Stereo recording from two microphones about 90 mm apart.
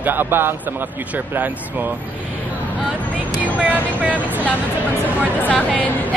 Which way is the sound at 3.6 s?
15° right (ahead or behind).